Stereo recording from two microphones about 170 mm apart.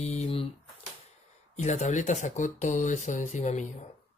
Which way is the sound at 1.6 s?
45° left (ahead or behind).